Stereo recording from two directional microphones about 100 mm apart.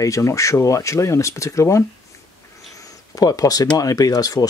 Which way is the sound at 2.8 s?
35° left (ahead or behind).